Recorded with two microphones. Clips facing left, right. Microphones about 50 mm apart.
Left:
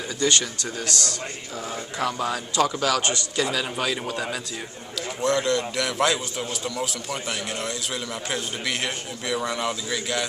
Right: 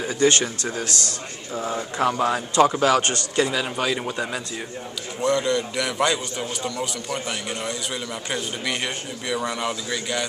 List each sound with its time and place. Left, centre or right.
0.0 s speech: right
3.0 s a man's voice: right
3.4 s a man's voice: centre